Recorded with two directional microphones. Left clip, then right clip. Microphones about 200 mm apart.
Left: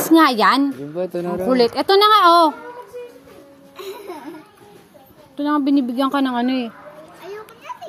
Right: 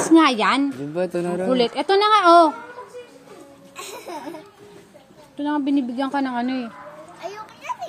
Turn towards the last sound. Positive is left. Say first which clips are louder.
# left 4 dB
turn(degrees=45)  # may be behind; listen again after turning